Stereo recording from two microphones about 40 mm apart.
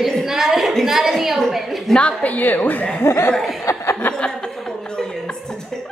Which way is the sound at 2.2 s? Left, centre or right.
Left.